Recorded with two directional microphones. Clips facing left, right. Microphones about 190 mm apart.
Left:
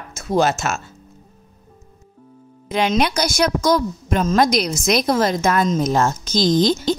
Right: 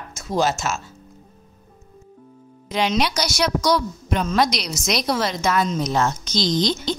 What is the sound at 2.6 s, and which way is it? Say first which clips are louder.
A woman's voice: left 3 dB; 50° left (ahead or behind).